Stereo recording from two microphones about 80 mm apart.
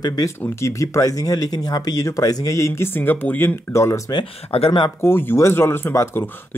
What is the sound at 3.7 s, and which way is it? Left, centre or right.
Speech, left.